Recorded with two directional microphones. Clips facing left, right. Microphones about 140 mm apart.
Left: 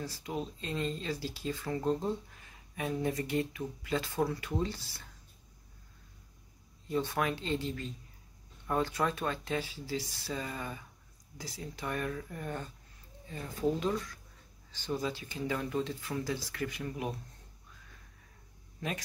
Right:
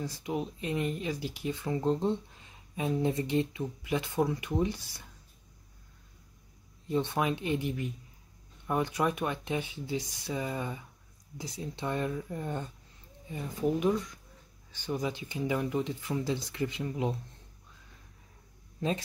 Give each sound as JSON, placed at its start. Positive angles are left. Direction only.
{"t": 0.0, "sound": "speech", "side_deg": -20}
{"t": 6.9, "sound": "speech", "side_deg": -20}